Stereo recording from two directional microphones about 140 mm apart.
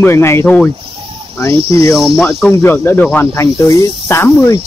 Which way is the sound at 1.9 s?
5° right (ahead or behind).